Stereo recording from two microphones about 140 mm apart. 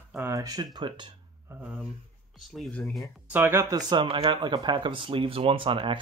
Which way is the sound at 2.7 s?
5° left (ahead or behind).